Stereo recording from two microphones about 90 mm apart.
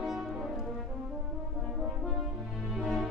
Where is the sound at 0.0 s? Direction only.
5° right (ahead or behind).